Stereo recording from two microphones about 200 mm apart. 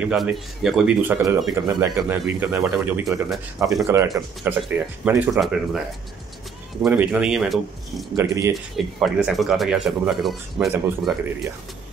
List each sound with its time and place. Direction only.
0.0 s speech: 5° right (ahead or behind)
6.8 s speech: 5° right (ahead or behind)
8.2 s speech: 15° right (ahead or behind)
8.7 s speech: centre (ahead or behind)